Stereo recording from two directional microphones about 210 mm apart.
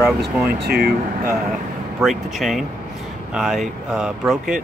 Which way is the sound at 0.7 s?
45° right (ahead or behind).